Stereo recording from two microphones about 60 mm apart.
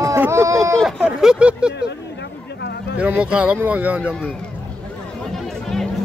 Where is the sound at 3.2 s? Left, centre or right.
Centre.